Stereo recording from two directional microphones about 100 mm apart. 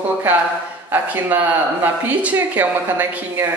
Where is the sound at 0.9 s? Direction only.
20° right (ahead or behind).